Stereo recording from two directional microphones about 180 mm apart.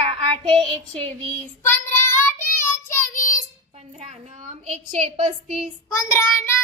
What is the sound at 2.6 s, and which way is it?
Child singing, 15° left (ahead or behind).